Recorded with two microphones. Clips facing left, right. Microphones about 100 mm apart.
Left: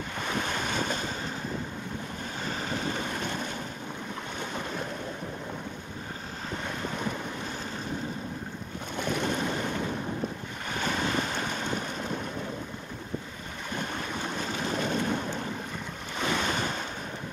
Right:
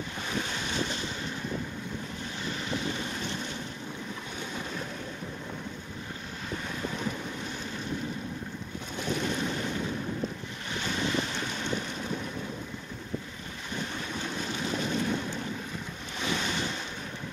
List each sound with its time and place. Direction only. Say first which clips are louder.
0.3 s boat: left 3 dB; 50° left (ahead or behind)
2.4 s boat: left 1 dB; 40° left (ahead or behind)
9.0 s boat: left 2 dB; 50° left (ahead or behind)
14.6 s boat: left 1 dB; 45° left (ahead or behind)
16.2 s waves: left 3 dB; 50° left (ahead or behind)